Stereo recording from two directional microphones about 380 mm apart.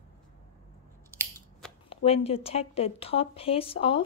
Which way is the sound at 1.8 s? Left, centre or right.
Centre.